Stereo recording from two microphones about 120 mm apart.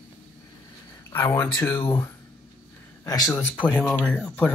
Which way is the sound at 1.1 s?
20° left (ahead or behind).